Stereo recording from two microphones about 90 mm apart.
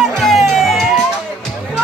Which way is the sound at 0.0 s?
Centre (ahead or behind).